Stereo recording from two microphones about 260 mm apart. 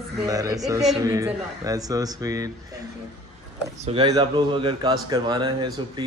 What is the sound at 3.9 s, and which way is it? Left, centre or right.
Speech, centre.